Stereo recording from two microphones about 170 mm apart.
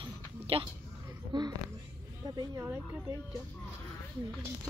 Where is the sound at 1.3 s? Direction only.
25° right (ahead or behind).